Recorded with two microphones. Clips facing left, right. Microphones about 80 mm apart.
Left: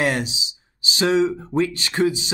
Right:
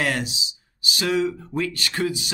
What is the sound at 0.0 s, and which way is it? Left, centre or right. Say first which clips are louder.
Speech: left 3 dB; centre.